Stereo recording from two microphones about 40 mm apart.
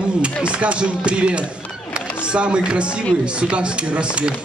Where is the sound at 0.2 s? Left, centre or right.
Right.